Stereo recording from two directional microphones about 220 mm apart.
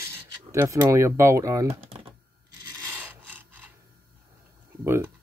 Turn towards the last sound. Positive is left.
turn(degrees=-10)  # may be behind; listen again after turning